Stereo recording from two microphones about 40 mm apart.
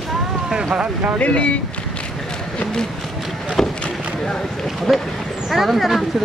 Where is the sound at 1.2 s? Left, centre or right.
Left.